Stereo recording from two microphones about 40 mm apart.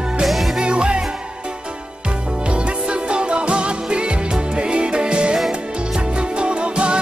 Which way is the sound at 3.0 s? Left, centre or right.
Right.